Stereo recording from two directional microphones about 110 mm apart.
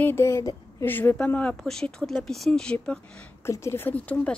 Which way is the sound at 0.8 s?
20° left (ahead or behind).